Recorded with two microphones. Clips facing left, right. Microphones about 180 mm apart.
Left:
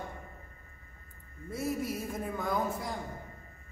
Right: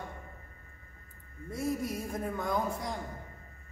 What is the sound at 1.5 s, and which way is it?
A man's voice, 5° left (ahead or behind).